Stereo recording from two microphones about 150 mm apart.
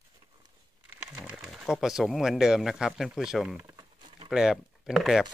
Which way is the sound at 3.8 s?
35° right (ahead or behind).